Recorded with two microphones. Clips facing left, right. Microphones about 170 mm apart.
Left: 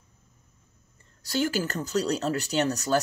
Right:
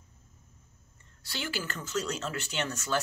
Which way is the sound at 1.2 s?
40° left (ahead or behind).